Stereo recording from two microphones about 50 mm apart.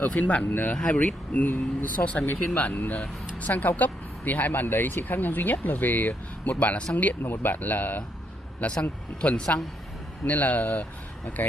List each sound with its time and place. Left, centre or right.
0.0 s speech: left
0.5 s speech: left
0.7 s speech: left
1.5 s speech: left
6.6 s speech: left
7.2 s speech: left
8.6 s speech: left